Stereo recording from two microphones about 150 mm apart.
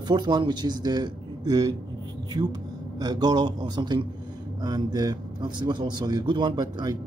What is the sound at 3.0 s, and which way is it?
A man's voice, 25° right (ahead or behind).